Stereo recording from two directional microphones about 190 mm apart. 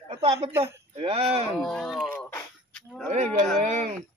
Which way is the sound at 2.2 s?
10° left (ahead or behind).